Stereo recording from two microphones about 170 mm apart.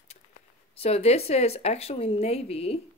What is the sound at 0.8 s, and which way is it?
A woman's voice, 35° left (ahead or behind).